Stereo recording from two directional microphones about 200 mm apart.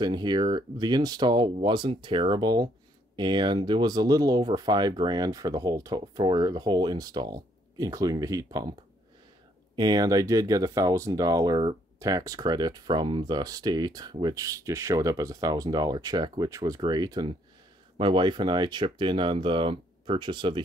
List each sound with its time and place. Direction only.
0.0 s speech: 20° right (ahead or behind)
9.8 s speech: 20° right (ahead or behind)